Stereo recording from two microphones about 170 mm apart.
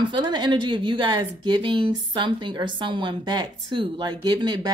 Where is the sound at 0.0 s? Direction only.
25° right (ahead or behind).